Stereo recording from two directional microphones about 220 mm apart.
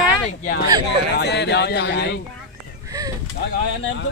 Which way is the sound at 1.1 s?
50° left (ahead or behind).